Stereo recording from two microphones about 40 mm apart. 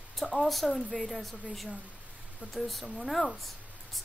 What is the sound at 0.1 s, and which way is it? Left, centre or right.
Speech, centre.